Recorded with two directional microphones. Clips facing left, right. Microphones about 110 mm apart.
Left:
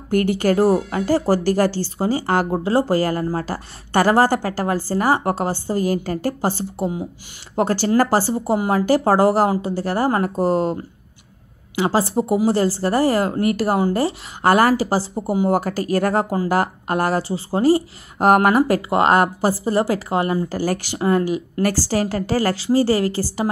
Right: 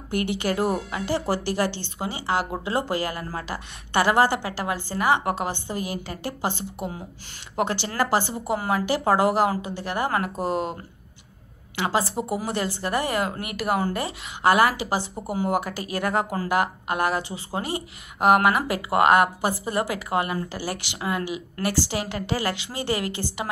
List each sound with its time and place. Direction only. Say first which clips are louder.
0.1 s speech: left 8 dB; 45° left (ahead or behind)
2.5 s speech: left 8 dB; 35° left (ahead or behind)
11.9 s speech: left 6 dB; 30° left (ahead or behind)
20.4 s speech: left 9 dB; 45° left (ahead or behind)